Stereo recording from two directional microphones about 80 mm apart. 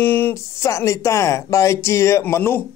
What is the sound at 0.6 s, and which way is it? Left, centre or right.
Speech, left.